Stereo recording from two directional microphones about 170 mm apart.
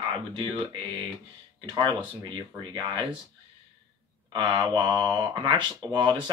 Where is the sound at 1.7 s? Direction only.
30° right (ahead or behind).